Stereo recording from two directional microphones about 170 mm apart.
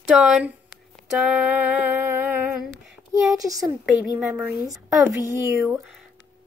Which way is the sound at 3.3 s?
20° right (ahead or behind).